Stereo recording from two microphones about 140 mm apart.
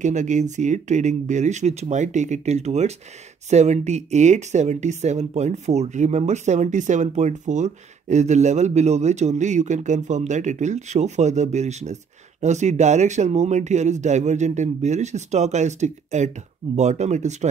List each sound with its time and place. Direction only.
0.0 s speech: 60° right (ahead or behind)